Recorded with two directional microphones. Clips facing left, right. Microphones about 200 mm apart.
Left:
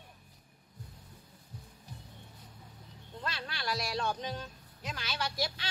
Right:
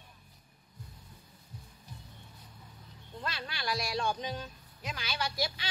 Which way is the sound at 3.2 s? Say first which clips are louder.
Right 1 dB; centre (ahead or behind).